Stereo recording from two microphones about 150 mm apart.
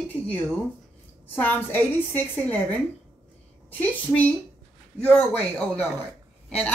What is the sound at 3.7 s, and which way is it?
A man's voice, 10° left (ahead or behind).